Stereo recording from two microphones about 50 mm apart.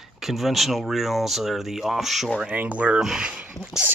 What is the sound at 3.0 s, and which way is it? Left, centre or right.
Speech, centre.